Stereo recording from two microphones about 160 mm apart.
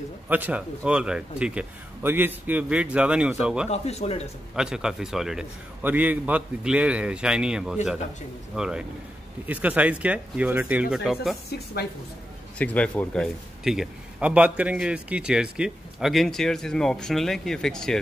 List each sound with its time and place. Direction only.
0.3 s speech: 10° right (ahead or behind)
3.7 s speech: 40° left (ahead or behind)
4.6 s a man's voice: 5° right (ahead or behind)
12.5 s a man's voice: 10° left (ahead or behind)